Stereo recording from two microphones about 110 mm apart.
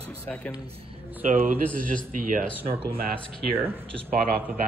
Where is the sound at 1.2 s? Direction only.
90° right.